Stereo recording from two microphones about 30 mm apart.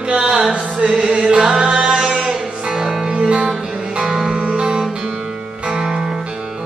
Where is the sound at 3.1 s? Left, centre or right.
Right.